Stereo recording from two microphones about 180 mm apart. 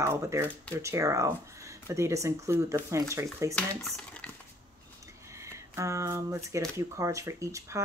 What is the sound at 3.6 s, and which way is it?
Speech, centre (ahead or behind).